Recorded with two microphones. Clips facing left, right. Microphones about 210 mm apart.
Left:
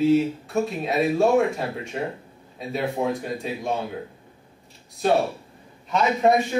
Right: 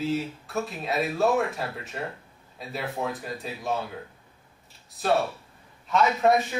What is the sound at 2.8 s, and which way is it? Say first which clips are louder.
Speech: left 6 dB; 15° left (ahead or behind).